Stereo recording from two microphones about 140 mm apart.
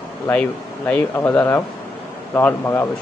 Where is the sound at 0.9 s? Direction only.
15° left (ahead or behind).